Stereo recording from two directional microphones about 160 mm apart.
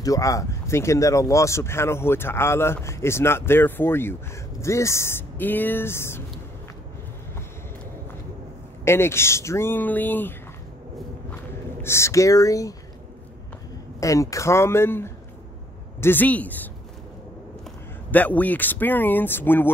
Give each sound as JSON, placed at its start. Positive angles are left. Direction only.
{"t": 0.0, "sound": "speech", "side_deg": 20}
{"t": 8.8, "sound": "speech", "side_deg": 15}
{"t": 11.8, "sound": "speech", "side_deg": 15}
{"t": 13.9, "sound": "speech", "side_deg": 20}
{"t": 18.1, "sound": "speech", "side_deg": 10}